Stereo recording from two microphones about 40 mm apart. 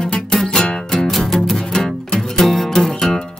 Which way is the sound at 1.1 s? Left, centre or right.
Centre.